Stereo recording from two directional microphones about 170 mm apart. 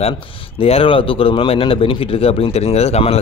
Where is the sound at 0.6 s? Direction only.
35° left (ahead or behind).